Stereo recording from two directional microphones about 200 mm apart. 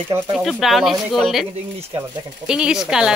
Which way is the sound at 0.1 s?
10° right (ahead or behind).